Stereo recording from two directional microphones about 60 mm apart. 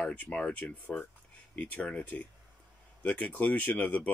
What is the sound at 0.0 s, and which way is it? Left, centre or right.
Speech, left.